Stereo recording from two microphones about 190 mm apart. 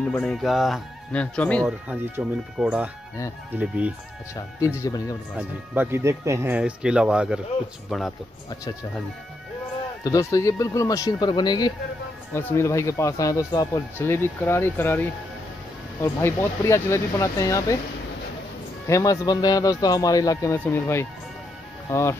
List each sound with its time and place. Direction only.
0.1 s speech: centre (ahead or behind)
1.9 s speech: 5° right (ahead or behind)
4.6 s speech: 15° left (ahead or behind)
5.3 s speech: 10° right (ahead or behind)
10.0 s speech: 15° left (ahead or behind)
12.4 s speech: 10° left (ahead or behind)
18.9 s speech: 15° left (ahead or behind)